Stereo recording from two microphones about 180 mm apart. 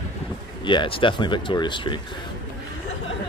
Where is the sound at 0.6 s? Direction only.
25° left (ahead or behind).